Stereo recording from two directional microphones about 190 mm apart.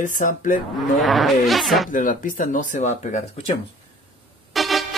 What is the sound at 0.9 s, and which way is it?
Speech, centre (ahead or behind).